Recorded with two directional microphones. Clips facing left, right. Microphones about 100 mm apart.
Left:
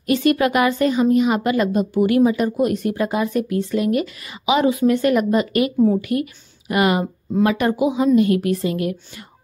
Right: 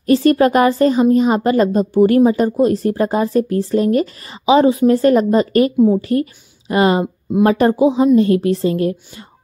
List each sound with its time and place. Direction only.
0.0 s a woman's voice: 35° right (ahead or behind)